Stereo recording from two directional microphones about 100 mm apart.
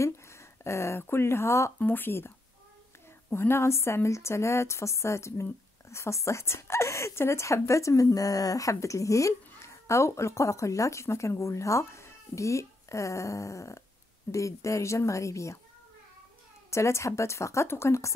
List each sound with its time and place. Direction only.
0.0 s a woman's voice: 30° left (ahead or behind)
16.7 s a woman's voice: 30° left (ahead or behind)